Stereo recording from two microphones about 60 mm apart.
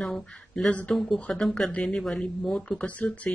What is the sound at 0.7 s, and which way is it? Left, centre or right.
Speech, left.